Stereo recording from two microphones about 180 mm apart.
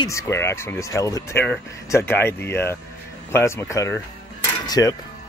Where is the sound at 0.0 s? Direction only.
15° left (ahead or behind).